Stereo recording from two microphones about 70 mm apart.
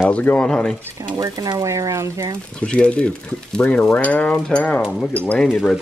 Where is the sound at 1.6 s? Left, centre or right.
Right.